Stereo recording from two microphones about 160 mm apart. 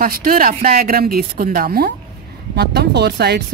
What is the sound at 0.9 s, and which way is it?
Speech, 65° right (ahead or behind).